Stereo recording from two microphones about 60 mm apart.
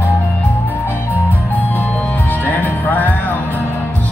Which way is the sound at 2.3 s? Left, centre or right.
Left.